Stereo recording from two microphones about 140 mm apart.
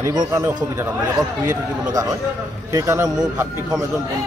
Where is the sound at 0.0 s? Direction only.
25° right (ahead or behind).